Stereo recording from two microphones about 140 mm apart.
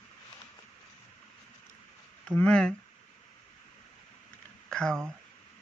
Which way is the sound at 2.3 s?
5° left (ahead or behind).